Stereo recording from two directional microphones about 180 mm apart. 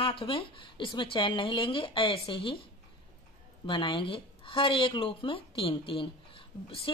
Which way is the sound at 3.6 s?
25° left (ahead or behind).